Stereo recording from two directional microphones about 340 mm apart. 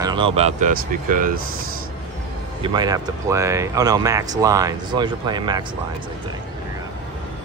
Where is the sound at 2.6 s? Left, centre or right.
Centre.